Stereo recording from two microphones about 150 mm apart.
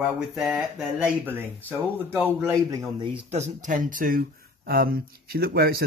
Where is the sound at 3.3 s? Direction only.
55° right (ahead or behind).